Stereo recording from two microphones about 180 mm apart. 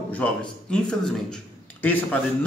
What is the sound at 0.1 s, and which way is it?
Speech, 5° left (ahead or behind).